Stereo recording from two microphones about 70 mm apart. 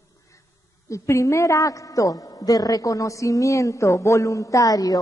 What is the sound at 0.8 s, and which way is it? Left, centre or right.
A woman's voice, left.